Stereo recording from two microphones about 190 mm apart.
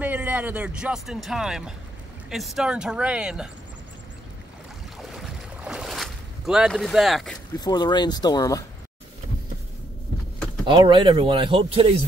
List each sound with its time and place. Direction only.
0.0 s speech: 10° right (ahead or behind)
5.0 s boat: 5° right (ahead or behind)
7.5 s speech: 20° left (ahead or behind)
10.7 s speech: 25° right (ahead or behind)